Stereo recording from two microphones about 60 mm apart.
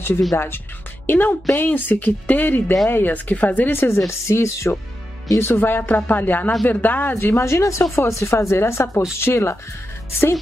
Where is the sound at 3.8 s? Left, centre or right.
Left.